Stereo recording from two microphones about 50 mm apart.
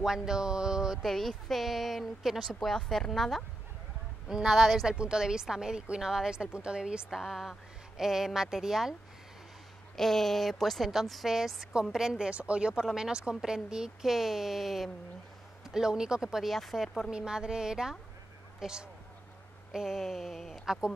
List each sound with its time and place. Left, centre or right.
0.0 s speech: centre
1.0 s a woman's voice: centre
4.3 s speech: centre
4.8 s speech: centre
7.1 s a woman's voice: centre
9.9 s a woman's voice: centre
12.3 s speech: right
16.5 s a woman's voice: centre
17.1 s a woman's voice: centre